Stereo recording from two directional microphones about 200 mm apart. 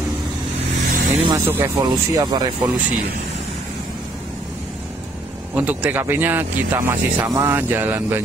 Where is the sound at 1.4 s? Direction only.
15° right (ahead or behind).